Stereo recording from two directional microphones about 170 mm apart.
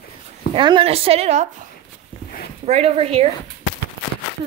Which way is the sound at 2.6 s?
40° right (ahead or behind).